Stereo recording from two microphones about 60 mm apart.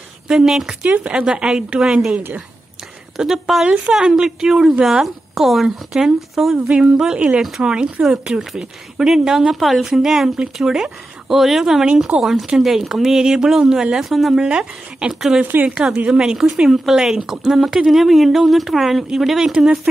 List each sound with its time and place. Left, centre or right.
0.3 s speech: centre
0.8 s speech: right
1.2 s speech: centre
3.6 s speech: centre
14.4 s speech: centre